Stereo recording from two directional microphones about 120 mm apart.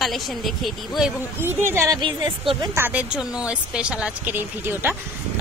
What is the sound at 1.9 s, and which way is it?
Speech, 40° right (ahead or behind).